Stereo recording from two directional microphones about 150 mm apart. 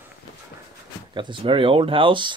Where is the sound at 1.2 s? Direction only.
35° right (ahead or behind).